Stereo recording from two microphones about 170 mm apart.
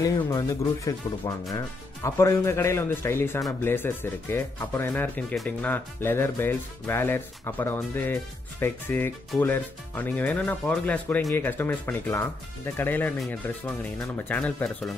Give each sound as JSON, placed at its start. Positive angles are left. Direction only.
{"t": 0.0, "sound": "speech", "side_deg": 20}